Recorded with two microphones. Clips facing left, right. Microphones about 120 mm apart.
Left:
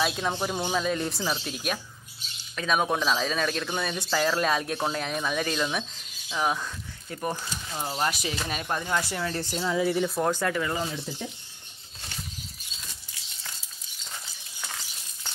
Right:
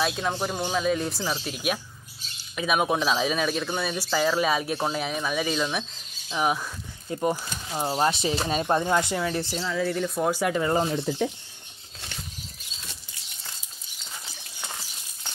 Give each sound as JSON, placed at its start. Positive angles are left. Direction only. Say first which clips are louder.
{"t": 0.0, "sound": "speech", "louder": "right 1 dB", "side_deg": 0}
{"t": 7.1, "sound": "speech", "louder": "right 5 dB", "side_deg": -20}
{"t": 9.6, "sound": "speech", "louder": "left 4 dB", "side_deg": 15}
{"t": 10.2, "sound": "speech", "louder": "right 4 dB", "side_deg": -10}
{"t": 10.5, "sound": "speech", "louder": "right 5 dB", "side_deg": -35}
{"t": 10.9, "sound": "speech", "louder": "right 9 dB", "side_deg": -65}